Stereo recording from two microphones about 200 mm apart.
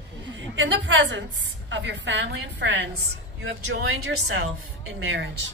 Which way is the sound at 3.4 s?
70° right (ahead or behind).